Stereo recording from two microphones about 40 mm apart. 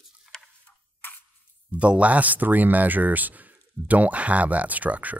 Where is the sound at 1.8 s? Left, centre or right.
Right.